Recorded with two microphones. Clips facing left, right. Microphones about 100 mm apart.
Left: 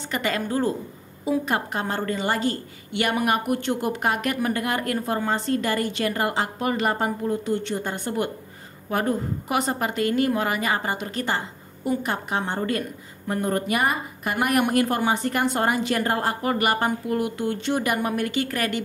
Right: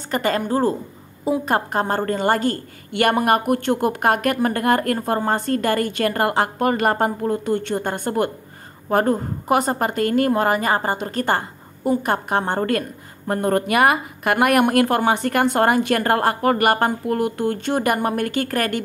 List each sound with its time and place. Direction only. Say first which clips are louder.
0.1 s a woman's voice: right 5 dB; 40° right (ahead or behind)